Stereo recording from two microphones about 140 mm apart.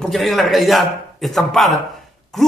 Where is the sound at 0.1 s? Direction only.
Centre (ahead or behind).